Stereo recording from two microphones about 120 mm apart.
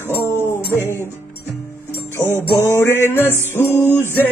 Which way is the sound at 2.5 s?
20° left (ahead or behind).